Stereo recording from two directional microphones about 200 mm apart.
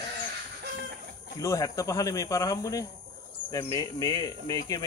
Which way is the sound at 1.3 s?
15° left (ahead or behind).